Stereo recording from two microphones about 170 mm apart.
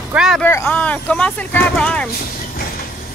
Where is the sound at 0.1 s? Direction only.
5° right (ahead or behind).